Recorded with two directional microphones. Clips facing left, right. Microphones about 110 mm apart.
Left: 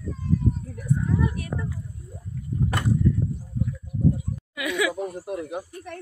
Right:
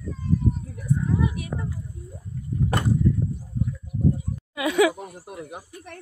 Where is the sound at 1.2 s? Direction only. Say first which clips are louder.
Even; 15° right (ahead or behind).